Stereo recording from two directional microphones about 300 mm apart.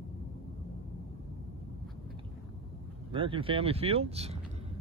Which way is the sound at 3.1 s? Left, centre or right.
Centre.